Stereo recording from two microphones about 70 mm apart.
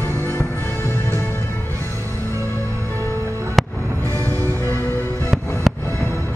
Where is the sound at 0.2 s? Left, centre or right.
Left.